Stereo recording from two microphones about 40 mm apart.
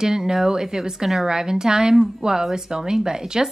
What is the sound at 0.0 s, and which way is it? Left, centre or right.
Speech, centre.